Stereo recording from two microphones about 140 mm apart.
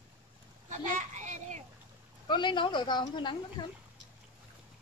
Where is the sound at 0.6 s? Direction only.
60° right (ahead or behind).